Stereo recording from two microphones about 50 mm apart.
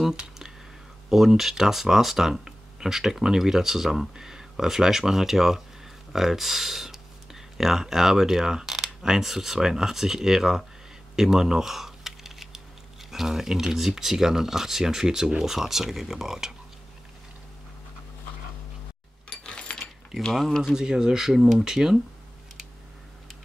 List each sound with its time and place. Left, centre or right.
1.1 s speech: centre
11.1 s a sound: centre
13.1 s speech: centre
19.2 s a sound: left
20.2 s speech: centre
20.7 s speech: centre